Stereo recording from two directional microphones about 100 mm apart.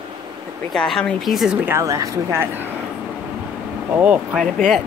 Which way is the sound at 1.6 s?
30° right (ahead or behind).